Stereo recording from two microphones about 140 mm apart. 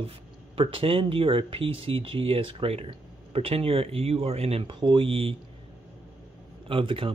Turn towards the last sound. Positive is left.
turn(degrees=-40)  # may be behind; listen again after turning